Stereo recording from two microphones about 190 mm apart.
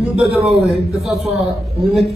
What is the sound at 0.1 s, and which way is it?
Speech, centre (ahead or behind).